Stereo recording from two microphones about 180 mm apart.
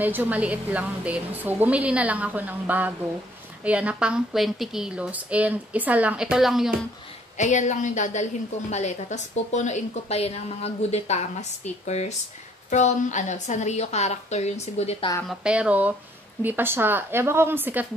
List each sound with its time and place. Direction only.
0.0 s a woman's voice: 10° right (ahead or behind)
7.3 s a woman's voice: 40° left (ahead or behind)
15.2 s a woman's voice: 5° right (ahead or behind)